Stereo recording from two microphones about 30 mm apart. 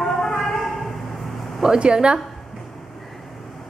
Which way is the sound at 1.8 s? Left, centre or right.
Right.